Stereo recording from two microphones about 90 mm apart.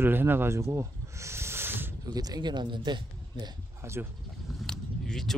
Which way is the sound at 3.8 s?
30° right (ahead or behind).